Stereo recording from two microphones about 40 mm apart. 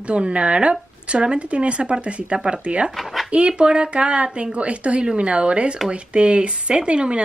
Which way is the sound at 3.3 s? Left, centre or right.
Right.